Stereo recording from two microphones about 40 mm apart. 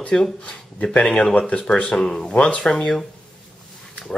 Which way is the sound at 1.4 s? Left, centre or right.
Left.